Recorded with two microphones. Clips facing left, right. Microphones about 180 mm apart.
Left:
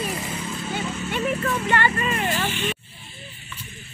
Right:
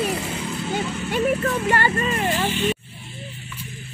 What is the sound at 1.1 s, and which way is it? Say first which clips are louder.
Speech: right 4 dB; 40° right (ahead or behind).